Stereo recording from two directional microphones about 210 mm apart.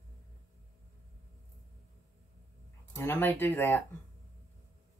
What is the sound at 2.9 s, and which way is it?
Speech, 10° left (ahead or behind).